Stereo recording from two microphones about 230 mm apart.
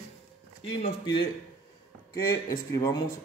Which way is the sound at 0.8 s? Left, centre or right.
Left.